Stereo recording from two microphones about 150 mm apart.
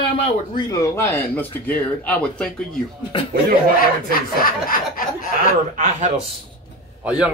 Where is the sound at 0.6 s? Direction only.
25° left (ahead or behind); by 2.8 s 5° left (ahead or behind).